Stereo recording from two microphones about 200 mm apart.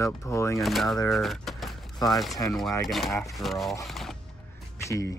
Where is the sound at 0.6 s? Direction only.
Centre (ahead or behind).